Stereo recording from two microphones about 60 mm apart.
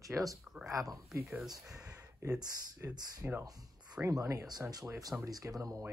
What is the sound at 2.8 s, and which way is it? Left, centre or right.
Speech, right.